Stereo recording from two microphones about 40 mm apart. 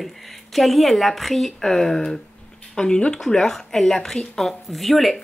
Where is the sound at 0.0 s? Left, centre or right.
Centre.